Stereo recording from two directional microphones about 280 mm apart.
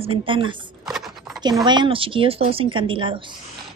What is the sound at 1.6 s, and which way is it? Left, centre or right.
A woman's voice, centre.